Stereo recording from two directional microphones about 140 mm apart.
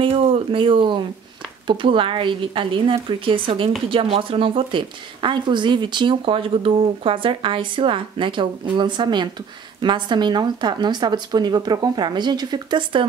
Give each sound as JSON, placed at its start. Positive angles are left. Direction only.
{"t": 0.0, "sound": "a woman's voice", "side_deg": -40}